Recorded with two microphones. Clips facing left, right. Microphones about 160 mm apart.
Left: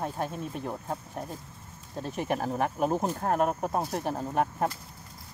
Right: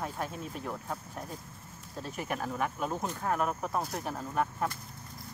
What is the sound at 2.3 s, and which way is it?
Speech, 35° left (ahead or behind).